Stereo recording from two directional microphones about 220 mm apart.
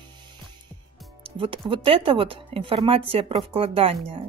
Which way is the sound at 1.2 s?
25° right (ahead or behind).